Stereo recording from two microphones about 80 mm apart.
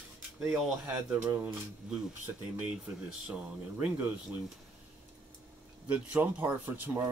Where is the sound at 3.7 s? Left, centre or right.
Right.